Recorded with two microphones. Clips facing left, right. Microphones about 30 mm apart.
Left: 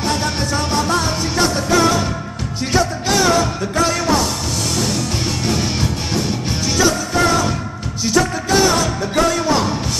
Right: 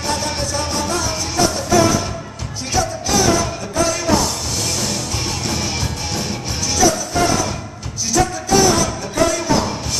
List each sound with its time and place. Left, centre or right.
0.2 s music: left
6.8 s music: left